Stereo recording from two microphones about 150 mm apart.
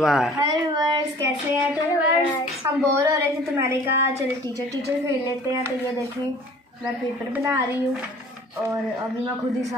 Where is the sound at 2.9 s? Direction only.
20° right (ahead or behind).